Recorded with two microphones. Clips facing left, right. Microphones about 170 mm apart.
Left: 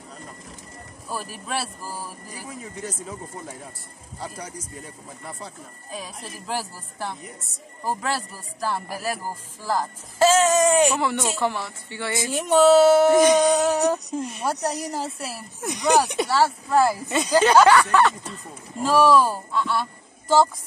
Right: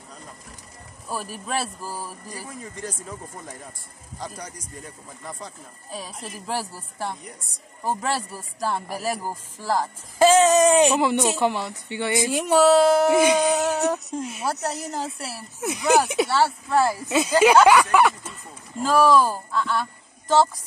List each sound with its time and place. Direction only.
1.0 s speech: centre (ahead or behind)
7.8 s speech: centre (ahead or behind)
9.2 s speech: 10° right (ahead or behind)
12.5 s speech: centre (ahead or behind)
13.1 s speech: 10° right (ahead or behind)
18.8 s speech: 5° left (ahead or behind)